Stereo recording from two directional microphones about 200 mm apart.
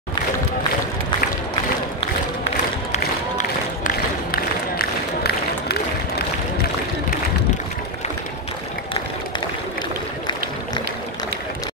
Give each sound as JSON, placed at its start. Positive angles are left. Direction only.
{"t": 2.9, "sound": "run", "side_deg": 40}